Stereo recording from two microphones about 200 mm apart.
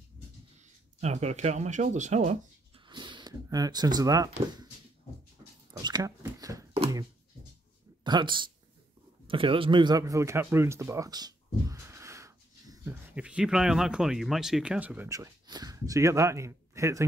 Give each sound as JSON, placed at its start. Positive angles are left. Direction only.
{"t": 1.0, "sound": "speech", "side_deg": -35}
{"t": 2.9, "sound": "speech", "side_deg": -25}
{"t": 5.7, "sound": "a sound", "side_deg": -20}
{"t": 8.0, "sound": "speech", "side_deg": -25}
{"t": 9.3, "sound": "a sound", "side_deg": -25}
{"t": 13.1, "sound": "speech", "side_deg": -5}